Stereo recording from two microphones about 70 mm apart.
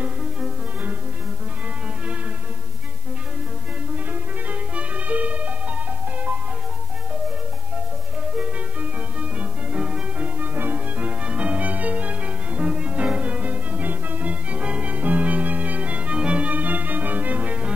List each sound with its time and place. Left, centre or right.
3.9 s music: right
9.2 s music: centre